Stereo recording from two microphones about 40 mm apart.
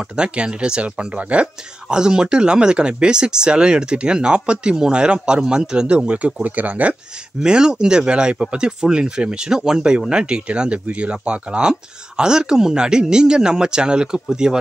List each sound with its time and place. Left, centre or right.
0.0 s speech: right
2.0 s speech: centre
6.0 s speech: right
7.4 s speech: centre